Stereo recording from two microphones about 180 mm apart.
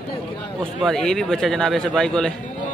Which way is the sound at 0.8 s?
5° left (ahead or behind).